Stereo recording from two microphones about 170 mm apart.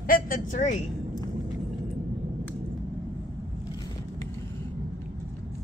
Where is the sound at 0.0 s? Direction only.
55° left (ahead or behind).